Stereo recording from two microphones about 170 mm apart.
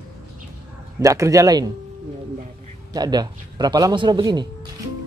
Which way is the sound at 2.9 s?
25° right (ahead or behind).